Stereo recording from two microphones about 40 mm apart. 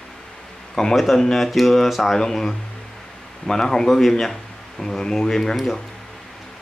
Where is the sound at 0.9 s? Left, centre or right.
Centre.